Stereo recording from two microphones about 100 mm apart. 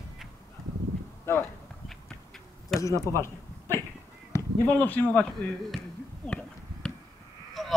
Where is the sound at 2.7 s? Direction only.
Centre (ahead or behind).